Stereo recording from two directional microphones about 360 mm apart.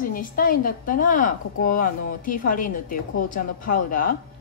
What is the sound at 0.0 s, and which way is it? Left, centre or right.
A woman's voice, left.